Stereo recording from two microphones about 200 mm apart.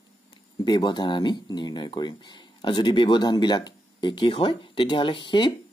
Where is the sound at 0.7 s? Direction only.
20° left (ahead or behind).